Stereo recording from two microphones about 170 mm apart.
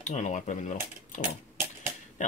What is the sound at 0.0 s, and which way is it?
Speech, 45° left (ahead or behind).